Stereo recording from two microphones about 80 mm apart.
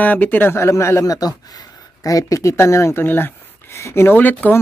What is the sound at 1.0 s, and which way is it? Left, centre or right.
Speech, left.